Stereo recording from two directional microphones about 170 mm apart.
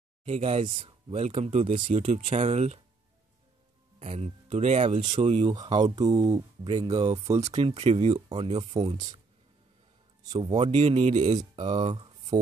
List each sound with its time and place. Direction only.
0.2 s speech: 40° right (ahead or behind)
4.0 s speech: 40° right (ahead or behind)
5.5 s speech: 25° right (ahead or behind)
7.5 s speech: 40° right (ahead or behind)
10.5 s speech: 40° right (ahead or behind)
11.5 s speech: 25° right (ahead or behind)